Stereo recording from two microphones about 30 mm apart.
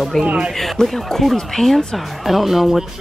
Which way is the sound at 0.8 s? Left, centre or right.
Centre.